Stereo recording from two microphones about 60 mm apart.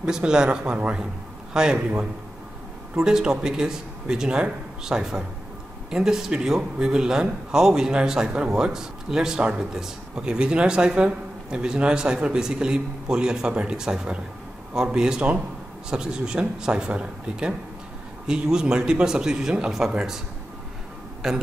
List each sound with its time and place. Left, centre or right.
0.0 s a man's voice: centre
3.0 s a man's voice: centre
21.2 s speech: centre